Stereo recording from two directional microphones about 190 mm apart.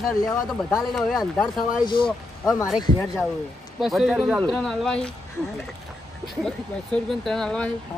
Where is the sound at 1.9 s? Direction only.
25° left (ahead or behind).